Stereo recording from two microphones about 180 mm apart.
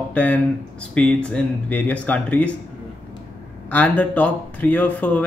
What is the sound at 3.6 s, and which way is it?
Speech, 10° left (ahead or behind).